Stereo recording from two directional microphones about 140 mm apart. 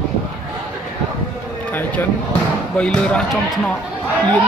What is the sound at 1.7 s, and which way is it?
Speech, 15° left (ahead or behind).